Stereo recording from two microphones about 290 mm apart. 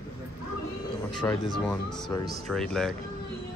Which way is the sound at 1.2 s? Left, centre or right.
Centre.